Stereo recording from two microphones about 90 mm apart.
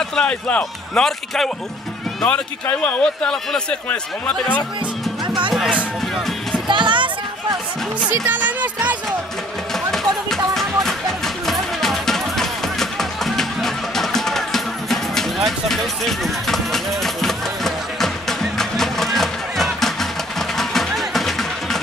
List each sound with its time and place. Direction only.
0.1 s a man's voice: 10° left (ahead or behind)
2.6 s speech: 20° left (ahead or behind)
3.0 s a man's voice: 10° left (ahead or behind)
5.2 s music: 55° right (ahead or behind)
6.7 s music: 60° right (ahead or behind)
8.0 s speech: 15° right (ahead or behind)
9.8 s music: 5° left (ahead or behind)